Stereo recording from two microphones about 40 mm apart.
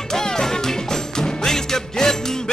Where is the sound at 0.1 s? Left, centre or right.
Centre.